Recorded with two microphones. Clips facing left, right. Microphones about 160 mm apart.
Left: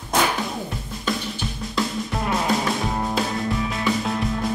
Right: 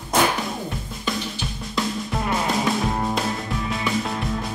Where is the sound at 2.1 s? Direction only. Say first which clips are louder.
Left 1 dB; centre (ahead or behind).